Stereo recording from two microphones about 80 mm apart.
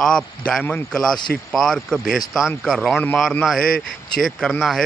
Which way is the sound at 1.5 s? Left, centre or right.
Centre.